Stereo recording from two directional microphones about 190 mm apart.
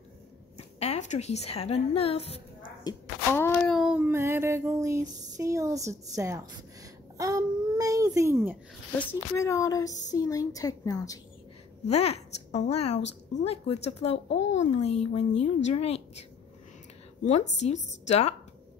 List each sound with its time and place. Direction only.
0.6 s a woman's voice: 35° left (ahead or behind)
2.8 s speech: 15° left (ahead or behind)
3.7 s a sound: centre (ahead or behind)
4.0 s a sound: 15° right (ahead or behind)
7.2 s babbling: 20° right (ahead or behind)
8.9 s a woman's voice: 10° left (ahead or behind)
11.9 s speech: 35° left (ahead or behind)